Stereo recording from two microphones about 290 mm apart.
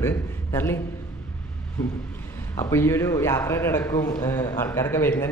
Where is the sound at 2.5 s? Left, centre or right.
Centre.